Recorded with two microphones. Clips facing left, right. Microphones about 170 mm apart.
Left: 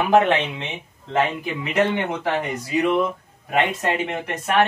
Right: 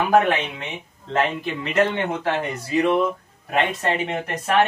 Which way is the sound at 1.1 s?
10° left (ahead or behind).